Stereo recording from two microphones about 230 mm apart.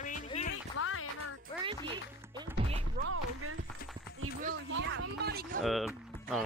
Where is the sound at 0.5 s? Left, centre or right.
Left.